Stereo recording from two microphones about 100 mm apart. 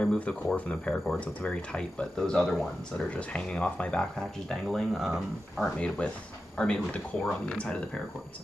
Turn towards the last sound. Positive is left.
turn(degrees=10)  # may be behind; listen again after turning